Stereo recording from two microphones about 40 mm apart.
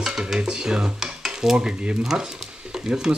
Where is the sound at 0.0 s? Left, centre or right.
Centre.